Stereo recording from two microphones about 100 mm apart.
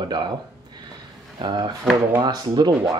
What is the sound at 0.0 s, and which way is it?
Speech, 50° right (ahead or behind).